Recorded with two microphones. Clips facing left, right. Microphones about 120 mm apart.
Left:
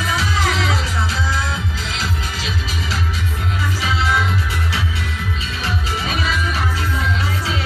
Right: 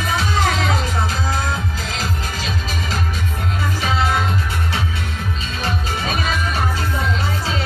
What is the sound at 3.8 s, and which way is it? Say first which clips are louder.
Music: right 1 dB; 45° right (ahead or behind).